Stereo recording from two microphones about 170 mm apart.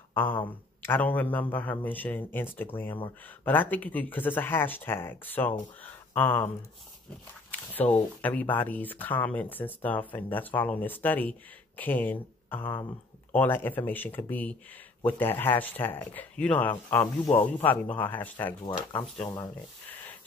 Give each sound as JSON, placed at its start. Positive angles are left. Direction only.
{"t": 0.1, "sound": "speech", "side_deg": 10}
{"t": 7.7, "sound": "speech", "side_deg": 10}
{"t": 19.2, "sound": "speech", "side_deg": 25}